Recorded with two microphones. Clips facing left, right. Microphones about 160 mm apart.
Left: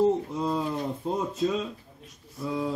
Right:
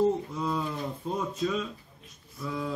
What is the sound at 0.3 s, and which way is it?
A man's voice, 30° left (ahead or behind).